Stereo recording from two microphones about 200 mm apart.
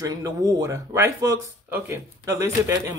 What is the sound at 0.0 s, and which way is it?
Speech, 15° right (ahead or behind).